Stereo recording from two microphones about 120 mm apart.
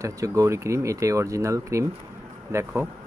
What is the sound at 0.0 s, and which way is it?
Speech, 25° right (ahead or behind).